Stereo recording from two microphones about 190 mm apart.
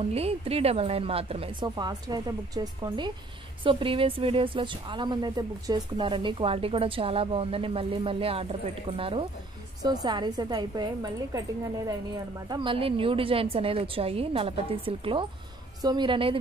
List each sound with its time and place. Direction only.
0.0 s speech: 30° right (ahead or behind)
12.4 s speech: 25° right (ahead or behind)